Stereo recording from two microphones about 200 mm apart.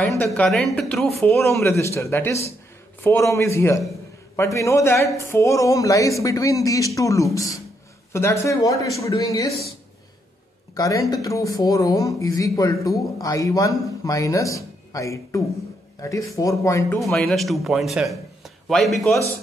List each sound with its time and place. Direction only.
0.2 s speech: 5° left (ahead or behind)
1.5 s speech: 15° left (ahead or behind)
10.7 s speech: 15° left (ahead or behind)
17.0 s a man's voice: centre (ahead or behind)